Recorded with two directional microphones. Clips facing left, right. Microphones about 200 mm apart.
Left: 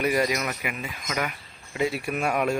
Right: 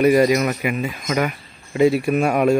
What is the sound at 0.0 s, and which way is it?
Speech, 35° right (ahead or behind).